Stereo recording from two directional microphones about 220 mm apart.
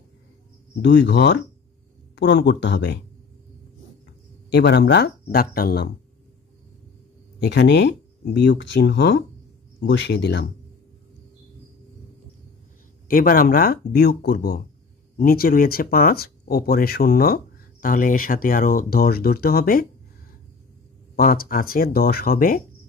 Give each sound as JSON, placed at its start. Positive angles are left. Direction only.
{"t": 0.8, "sound": "speech", "side_deg": 50}
{"t": 4.5, "sound": "speech", "side_deg": 50}
{"t": 7.3, "sound": "speech", "side_deg": 50}
{"t": 13.1, "sound": "speech", "side_deg": 40}
{"t": 21.2, "sound": "speech", "side_deg": 40}